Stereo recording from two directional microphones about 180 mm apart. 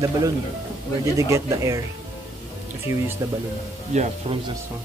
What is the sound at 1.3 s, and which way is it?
Speech, 15° right (ahead or behind).